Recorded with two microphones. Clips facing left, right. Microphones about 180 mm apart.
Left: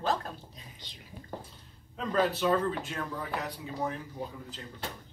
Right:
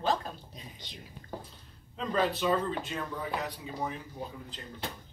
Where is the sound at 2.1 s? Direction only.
5° left (ahead or behind).